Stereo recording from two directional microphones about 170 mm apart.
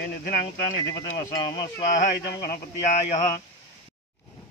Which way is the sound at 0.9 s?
20° left (ahead or behind).